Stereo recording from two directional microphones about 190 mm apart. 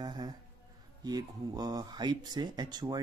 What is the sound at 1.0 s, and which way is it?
Speech, 20° right (ahead or behind).